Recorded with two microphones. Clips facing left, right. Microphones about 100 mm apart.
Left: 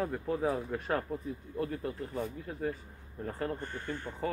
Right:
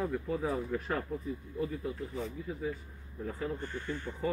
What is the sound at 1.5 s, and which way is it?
Speech, 65° left (ahead or behind).